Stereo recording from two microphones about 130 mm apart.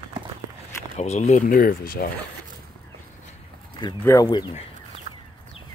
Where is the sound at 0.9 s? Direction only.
60° left (ahead or behind); by 1.9 s 90° left.